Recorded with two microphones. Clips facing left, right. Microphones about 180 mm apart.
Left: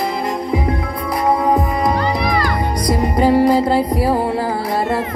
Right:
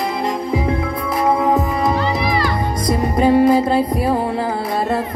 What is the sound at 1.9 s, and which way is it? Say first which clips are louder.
Music: left 1 dB; 45° left (ahead or behind).